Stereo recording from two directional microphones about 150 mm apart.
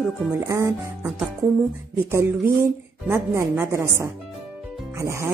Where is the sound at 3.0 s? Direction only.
20° right (ahead or behind).